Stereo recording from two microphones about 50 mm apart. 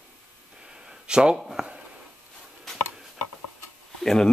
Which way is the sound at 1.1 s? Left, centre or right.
Centre.